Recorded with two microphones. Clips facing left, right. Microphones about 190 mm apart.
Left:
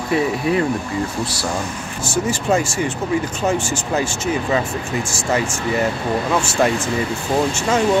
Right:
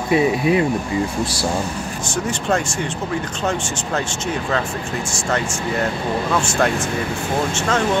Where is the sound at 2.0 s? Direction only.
5° left (ahead or behind).